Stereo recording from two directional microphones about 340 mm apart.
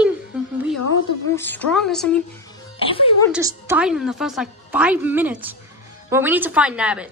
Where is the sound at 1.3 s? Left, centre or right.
Centre.